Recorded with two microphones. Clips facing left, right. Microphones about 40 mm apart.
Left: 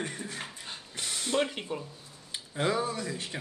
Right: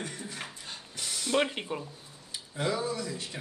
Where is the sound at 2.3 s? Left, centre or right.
Left.